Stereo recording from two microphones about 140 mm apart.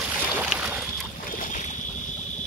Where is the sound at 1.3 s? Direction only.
75° left (ahead or behind).